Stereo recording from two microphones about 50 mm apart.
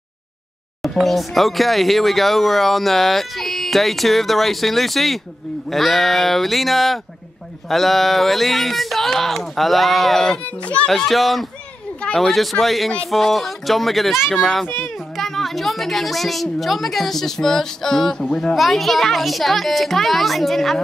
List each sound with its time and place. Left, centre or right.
0.8 s speech: centre
10.6 s a child's voice: left
10.9 s speech: centre